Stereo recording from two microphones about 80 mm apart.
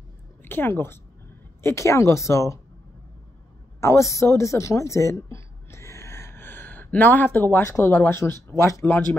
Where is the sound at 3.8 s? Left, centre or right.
Left.